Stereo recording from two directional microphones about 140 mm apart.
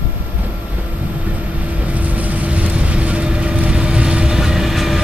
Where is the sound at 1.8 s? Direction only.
10° right (ahead or behind).